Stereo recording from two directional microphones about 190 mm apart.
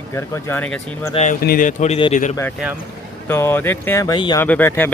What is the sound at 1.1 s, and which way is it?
Speech, 40° left (ahead or behind).